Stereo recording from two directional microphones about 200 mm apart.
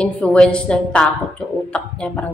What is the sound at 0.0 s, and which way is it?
A woman's voice, 5° left (ahead or behind).